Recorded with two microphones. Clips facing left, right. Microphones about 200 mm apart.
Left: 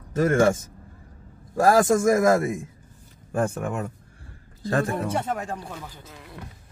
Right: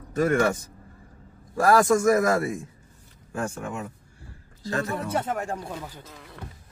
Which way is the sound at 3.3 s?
55° left (ahead or behind).